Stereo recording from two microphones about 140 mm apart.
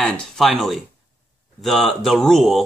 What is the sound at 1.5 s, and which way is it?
Speech, centre (ahead or behind).